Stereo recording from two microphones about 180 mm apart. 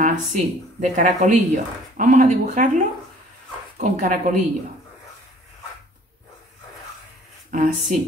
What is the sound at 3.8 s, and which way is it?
Speech, 45° right (ahead or behind).